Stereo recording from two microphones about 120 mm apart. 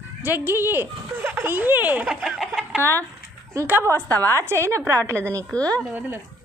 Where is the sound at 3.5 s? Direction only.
20° right (ahead or behind).